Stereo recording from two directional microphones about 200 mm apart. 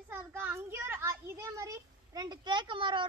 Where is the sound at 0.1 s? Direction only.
10° right (ahead or behind).